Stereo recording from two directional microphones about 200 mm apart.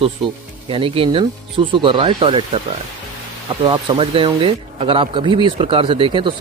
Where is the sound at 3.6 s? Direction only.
25° right (ahead or behind).